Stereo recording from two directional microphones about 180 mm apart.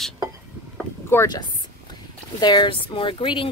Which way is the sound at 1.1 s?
15° left (ahead or behind).